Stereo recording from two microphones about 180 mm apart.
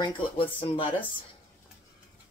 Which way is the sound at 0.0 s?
30° left (ahead or behind).